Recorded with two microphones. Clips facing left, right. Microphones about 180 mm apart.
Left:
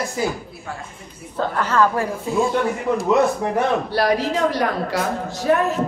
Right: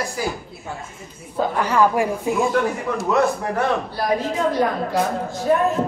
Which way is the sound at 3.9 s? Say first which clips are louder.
Left 3 dB; 80° left.